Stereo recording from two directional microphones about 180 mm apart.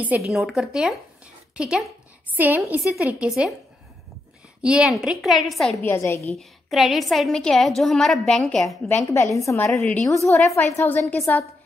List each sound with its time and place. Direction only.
0.0 s a woman's voice: 5° right (ahead or behind)
4.6 s a woman's voice: 5° right (ahead or behind)
5.9 s a woman's voice: 15° left (ahead or behind)
6.3 s a woman's voice: centre (ahead or behind)
8.8 s a woman's voice: 15° left (ahead or behind)
9.7 s a woman's voice: 5° left (ahead or behind)